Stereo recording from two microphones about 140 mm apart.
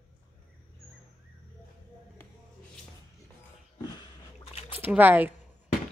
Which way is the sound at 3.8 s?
30° left (ahead or behind).